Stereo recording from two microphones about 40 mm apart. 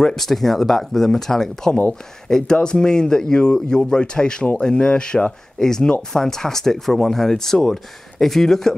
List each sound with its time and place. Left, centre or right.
0.1 s speech: centre